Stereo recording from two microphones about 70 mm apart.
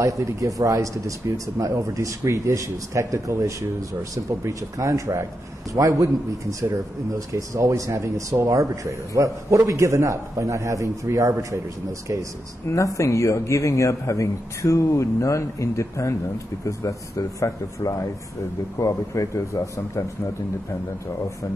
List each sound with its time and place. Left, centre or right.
0.0 s speech: right
7.2 s speech: right
12.7 s a man's voice: left